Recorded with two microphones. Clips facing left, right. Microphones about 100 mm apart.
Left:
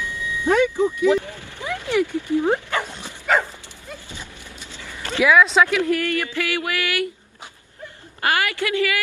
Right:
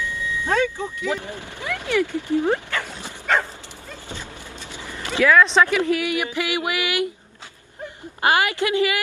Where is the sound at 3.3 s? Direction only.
5° left (ahead or behind).